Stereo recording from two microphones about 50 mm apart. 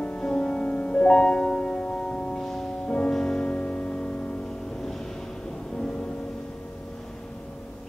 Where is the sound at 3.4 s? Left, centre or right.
Left.